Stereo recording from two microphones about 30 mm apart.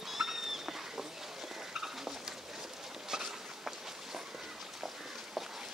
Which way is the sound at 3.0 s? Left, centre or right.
Centre.